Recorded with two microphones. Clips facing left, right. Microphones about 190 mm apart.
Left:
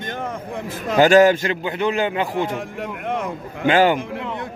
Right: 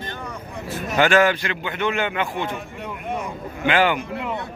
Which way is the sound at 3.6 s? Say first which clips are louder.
Left 4 dB; 40° left (ahead or behind).